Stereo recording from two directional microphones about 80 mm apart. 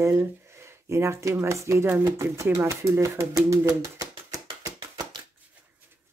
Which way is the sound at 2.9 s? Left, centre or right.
Right.